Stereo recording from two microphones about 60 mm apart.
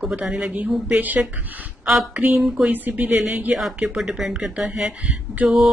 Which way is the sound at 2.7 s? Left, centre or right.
Right.